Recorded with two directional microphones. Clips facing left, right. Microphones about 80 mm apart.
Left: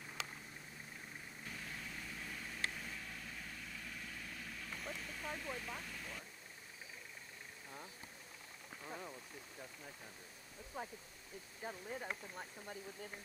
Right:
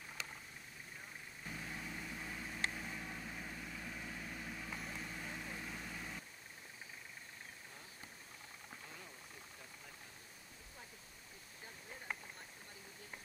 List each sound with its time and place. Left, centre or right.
1.6 s vehicle: centre
8.8 s rain on surface: left
10.8 s speech: left
11.6 s speech: left